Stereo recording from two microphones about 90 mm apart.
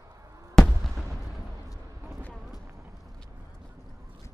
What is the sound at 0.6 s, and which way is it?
Fireworks, 5° left (ahead or behind).